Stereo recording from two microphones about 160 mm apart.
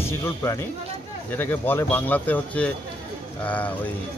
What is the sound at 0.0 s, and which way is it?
Speech, 15° left (ahead or behind).